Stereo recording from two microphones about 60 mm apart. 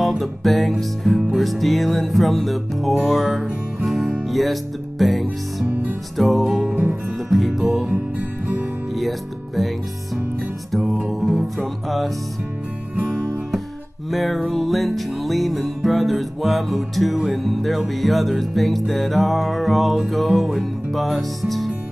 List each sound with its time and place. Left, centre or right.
0.0 s music: centre
6.7 s music: right
7.2 s music: centre
10.7 s music: centre
14.1 s music: centre